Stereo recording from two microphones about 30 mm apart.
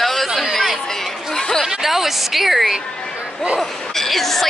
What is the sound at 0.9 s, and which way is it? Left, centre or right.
Speech, centre.